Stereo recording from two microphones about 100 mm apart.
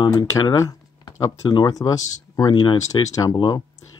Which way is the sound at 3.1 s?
35° left (ahead or behind).